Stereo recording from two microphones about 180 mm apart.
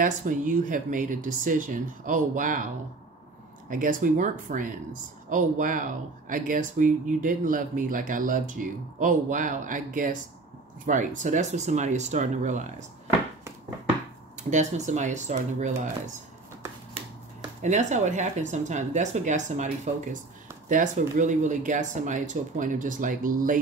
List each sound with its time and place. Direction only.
0.0 s speech: 45° right (ahead or behind)
3.6 s speech: 50° right (ahead or behind)
14.5 s speech: 40° right (ahead or behind)
17.6 s speech: 40° right (ahead or behind)